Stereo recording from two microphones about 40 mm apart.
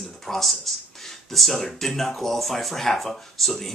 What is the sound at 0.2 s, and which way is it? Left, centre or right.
Speech, centre.